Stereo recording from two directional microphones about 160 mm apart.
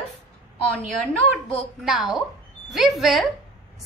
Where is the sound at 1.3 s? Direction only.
Centre (ahead or behind).